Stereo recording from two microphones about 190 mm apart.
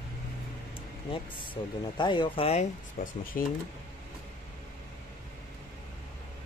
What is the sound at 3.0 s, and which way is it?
Speech, 45° left (ahead or behind).